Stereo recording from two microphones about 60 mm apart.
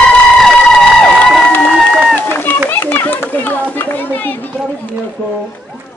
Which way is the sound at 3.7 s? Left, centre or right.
Left.